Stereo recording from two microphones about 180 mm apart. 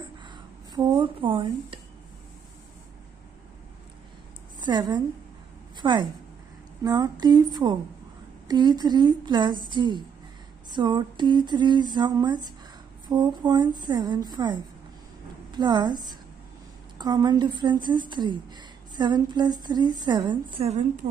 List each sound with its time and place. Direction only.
0.2 s a sound: 25° right (ahead or behind)
4.6 s a woman's voice: 25° right (ahead or behind)
8.5 s a woman's voice: 25° right (ahead or behind)